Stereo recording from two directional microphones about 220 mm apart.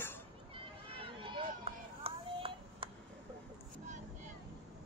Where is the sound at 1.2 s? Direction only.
25° right (ahead or behind).